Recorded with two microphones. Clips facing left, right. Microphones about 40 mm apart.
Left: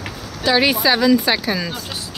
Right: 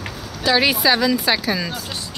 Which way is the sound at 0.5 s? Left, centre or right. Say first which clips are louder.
Left 1 dB; centre.